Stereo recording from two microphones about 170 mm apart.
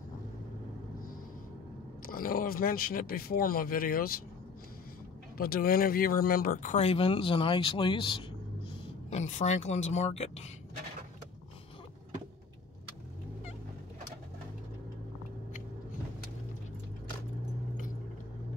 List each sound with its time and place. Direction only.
2.0 s speech: 55° left (ahead or behind)
5.4 s speech: 60° left (ahead or behind); by 8.2 s 30° left (ahead or behind)
9.1 s speech: 45° left (ahead or behind)